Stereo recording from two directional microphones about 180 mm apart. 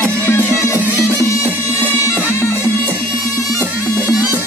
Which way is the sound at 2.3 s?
10° left (ahead or behind).